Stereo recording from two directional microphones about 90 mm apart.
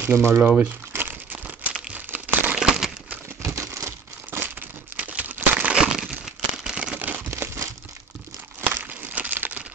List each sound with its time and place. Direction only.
0.0 s speech: 25° right (ahead or behind)
0.6 s crumpling: 20° right (ahead or behind)
2.6 s crumpling: 5° right (ahead or behind)
3.4 s crumpling: 35° right (ahead or behind); by 9.7 s 20° right (ahead or behind)